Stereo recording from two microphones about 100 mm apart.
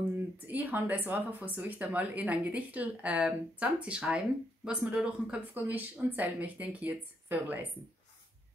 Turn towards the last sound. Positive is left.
turn(degrees=-20)  # may be behind; listen again after turning